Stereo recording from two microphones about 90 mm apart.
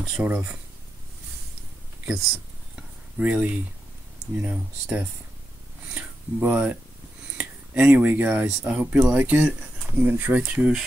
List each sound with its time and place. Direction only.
0.2 s speech: 15° right (ahead or behind)
2.7 s cutlery: 15° right (ahead or behind)
4.4 s speech: 15° right (ahead or behind)